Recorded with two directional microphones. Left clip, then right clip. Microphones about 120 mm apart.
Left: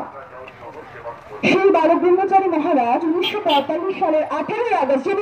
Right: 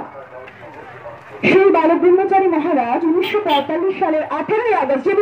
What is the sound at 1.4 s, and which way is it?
Speech, 40° left (ahead or behind).